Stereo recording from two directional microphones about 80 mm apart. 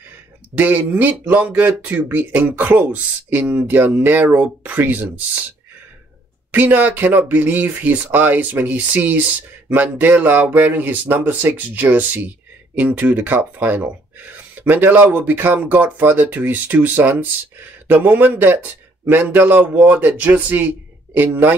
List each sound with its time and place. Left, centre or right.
0.6 s speech: right
6.5 s speech: right